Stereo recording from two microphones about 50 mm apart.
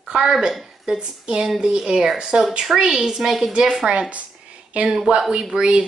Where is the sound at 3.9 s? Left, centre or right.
Right.